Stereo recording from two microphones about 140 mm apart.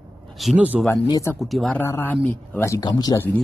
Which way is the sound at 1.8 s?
15° left (ahead or behind).